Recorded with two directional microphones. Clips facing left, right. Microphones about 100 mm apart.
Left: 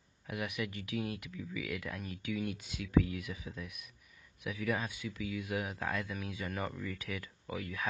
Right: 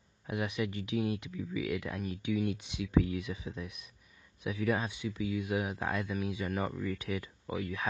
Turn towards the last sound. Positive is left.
turn(degrees=-25)  # may be behind; listen again after turning